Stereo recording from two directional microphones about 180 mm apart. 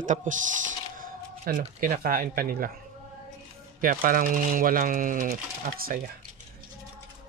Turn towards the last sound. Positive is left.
turn(degrees=-50)  # may be behind; listen again after turning